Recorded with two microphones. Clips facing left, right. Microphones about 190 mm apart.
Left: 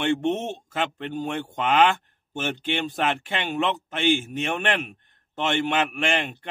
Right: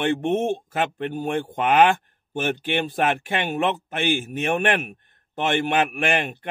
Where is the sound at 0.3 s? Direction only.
10° right (ahead or behind).